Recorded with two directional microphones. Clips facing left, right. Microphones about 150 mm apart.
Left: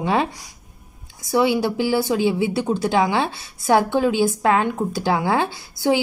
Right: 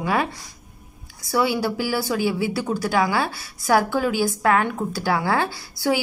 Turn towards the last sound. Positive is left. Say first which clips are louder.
# left 3 dB
turn(degrees=20)  # may be behind; listen again after turning